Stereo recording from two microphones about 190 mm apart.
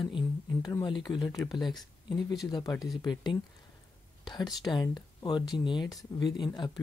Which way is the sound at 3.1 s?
25° left (ahead or behind).